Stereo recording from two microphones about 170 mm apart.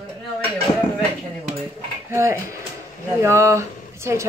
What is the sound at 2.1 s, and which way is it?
A woman's voice, 15° right (ahead or behind).